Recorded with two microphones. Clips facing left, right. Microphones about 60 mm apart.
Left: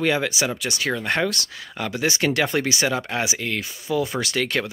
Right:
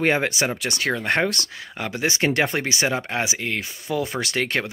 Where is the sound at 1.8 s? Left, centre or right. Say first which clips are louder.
Even; right.